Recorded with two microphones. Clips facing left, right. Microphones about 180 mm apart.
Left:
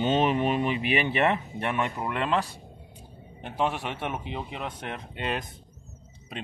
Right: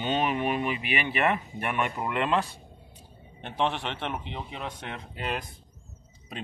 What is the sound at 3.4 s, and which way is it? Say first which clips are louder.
A man's voice: even; 5° left (ahead or behind).